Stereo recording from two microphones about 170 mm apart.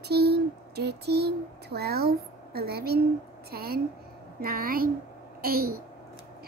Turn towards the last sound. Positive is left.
turn(degrees=-60)  # may be behind; listen again after turning